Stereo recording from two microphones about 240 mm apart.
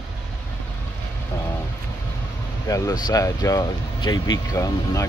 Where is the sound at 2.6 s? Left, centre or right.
Centre.